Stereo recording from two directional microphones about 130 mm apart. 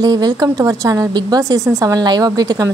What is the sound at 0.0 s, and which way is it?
A woman's voice, 30° right (ahead or behind).